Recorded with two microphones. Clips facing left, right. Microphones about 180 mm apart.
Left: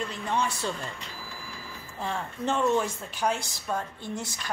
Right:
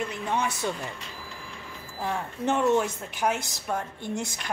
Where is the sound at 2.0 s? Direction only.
15° right (ahead or behind).